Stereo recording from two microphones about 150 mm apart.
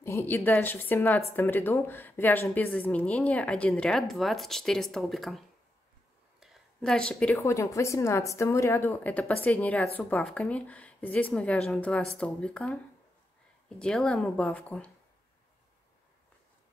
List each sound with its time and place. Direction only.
0.0 s a woman's voice: 15° left (ahead or behind); by 5.4 s centre (ahead or behind)
6.4 s a woman's voice: centre (ahead or behind)
7.4 s a woman's voice: 20° left (ahead or behind)